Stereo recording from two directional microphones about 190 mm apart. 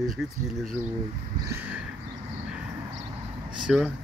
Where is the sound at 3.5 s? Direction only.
5° right (ahead or behind).